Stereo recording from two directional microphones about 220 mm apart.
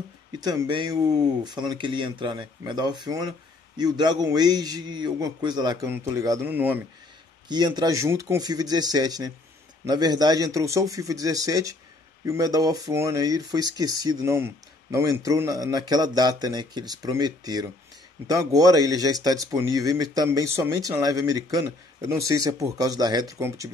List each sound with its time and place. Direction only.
0.3 s speech: 20° right (ahead or behind)
7.4 s speech: 20° right (ahead or behind)